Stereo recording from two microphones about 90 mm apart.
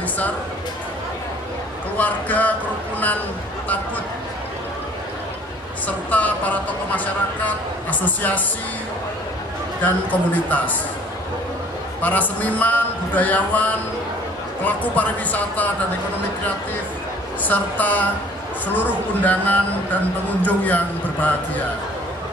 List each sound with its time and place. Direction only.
2.0 s speech: 20° left (ahead or behind)
6.0 s a man's voice: 20° left (ahead or behind)
9.8 s a man's voice: 20° left (ahead or behind)
12.0 s a man's voice: 20° left (ahead or behind)
17.5 s a man's voice: 20° left (ahead or behind)